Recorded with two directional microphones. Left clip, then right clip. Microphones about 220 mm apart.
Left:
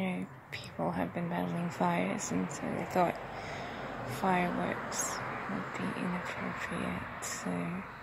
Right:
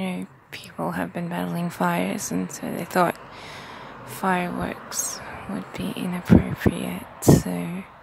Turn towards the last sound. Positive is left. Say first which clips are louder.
# right 16 dB
turn(degrees=-25)  # may be behind; listen again after turning